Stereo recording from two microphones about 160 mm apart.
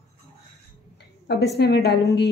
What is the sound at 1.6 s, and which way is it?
Speech, 90° left.